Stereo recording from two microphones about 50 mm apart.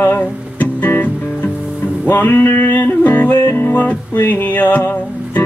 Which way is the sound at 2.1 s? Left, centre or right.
Left.